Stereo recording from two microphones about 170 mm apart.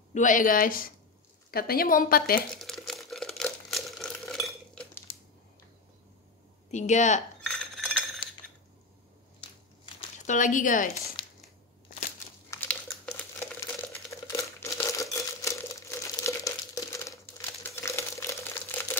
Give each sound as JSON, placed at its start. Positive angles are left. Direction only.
{"t": 0.1, "sound": "a woman's voice", "side_deg": 50}
{"t": 2.5, "sound": "crumpling", "side_deg": 0}
{"t": 6.7, "sound": "speech", "side_deg": 45}
{"t": 7.4, "sound": "chink", "side_deg": 0}
{"t": 10.1, "sound": "speech", "side_deg": 45}
{"t": 12.4, "sound": "crumpling", "side_deg": 10}